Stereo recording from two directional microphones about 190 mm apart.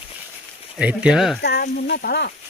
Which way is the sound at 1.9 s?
60° left (ahead or behind).